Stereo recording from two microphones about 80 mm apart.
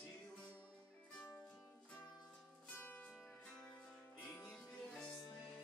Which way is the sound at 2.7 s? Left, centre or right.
Left.